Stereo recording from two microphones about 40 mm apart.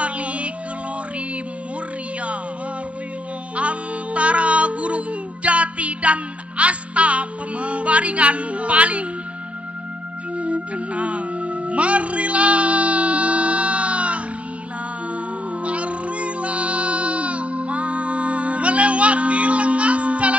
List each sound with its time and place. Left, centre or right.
0.0 s music: right
3.5 s music: right
10.3 s music: right
15.6 s music: right